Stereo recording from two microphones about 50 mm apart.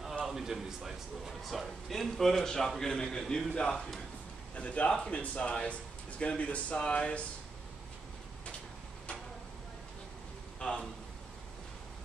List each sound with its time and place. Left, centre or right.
0.2 s a man's voice: centre; by 7.2 s left
10.6 s a man's voice: centre